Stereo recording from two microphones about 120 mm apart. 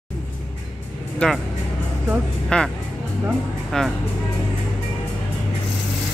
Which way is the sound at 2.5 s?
10° left (ahead or behind).